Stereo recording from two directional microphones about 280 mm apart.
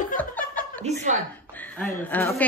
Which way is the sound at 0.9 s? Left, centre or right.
Right.